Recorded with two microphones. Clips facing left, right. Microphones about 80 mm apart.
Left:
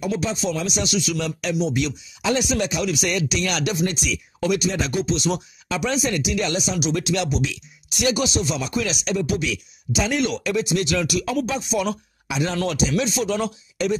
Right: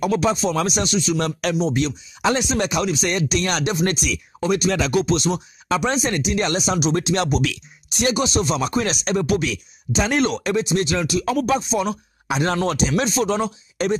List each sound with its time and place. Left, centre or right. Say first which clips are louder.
0.0 s speech: right 5 dB; right
0.6 s speech: right 4 dB; right
0.8 s speech: right 3 dB; right
1.2 s speech: right 2 dB; right
2.6 s speech: right 2 dB; right
2.9 s speech: right 2 dB; right
3.8 s speech: right 2 dB; right
4.6 s speech: right 4 dB; right
5.7 s speech: right 2 dB; right
7.9 s speech: right 1 dB; right
11.3 s speech: right 4 dB; right